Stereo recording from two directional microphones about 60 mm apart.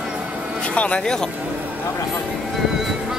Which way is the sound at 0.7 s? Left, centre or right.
Left.